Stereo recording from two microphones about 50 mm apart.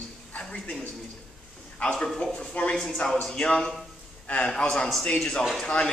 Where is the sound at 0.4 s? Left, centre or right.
Centre.